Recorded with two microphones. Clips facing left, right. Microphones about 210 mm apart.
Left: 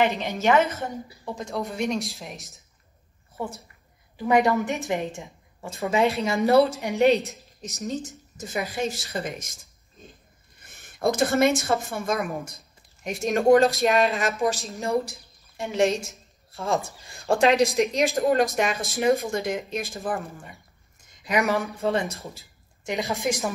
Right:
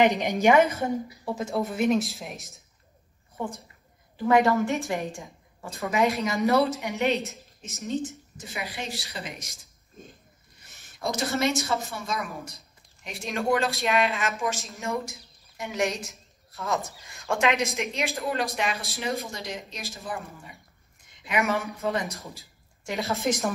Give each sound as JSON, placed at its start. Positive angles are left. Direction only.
{"t": 0.0, "sound": "a woman's voice", "side_deg": -15}
{"t": 4.2, "sound": "a woman's voice", "side_deg": 15}
{"t": 10.0, "sound": "a sound", "side_deg": -50}
{"t": 10.8, "sound": "a woman's voice", "side_deg": 55}
{"t": 17.7, "sound": "speech", "side_deg": 45}
{"t": 21.5, "sound": "a woman's voice", "side_deg": 30}
{"t": 22.8, "sound": "a woman's voice", "side_deg": 15}